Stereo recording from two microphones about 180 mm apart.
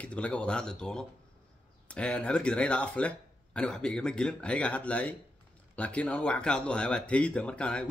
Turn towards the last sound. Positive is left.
turn(degrees=5)  # may be behind; listen again after turning